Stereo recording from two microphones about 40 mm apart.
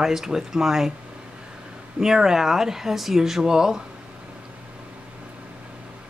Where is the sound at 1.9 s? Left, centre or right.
Centre.